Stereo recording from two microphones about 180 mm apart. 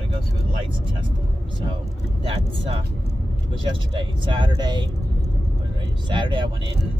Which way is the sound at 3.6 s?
25° right (ahead or behind).